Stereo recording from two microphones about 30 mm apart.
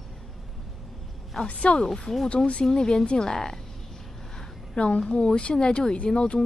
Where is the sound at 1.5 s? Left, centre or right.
Left.